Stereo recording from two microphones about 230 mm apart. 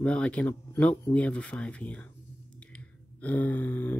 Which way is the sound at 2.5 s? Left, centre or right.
Centre.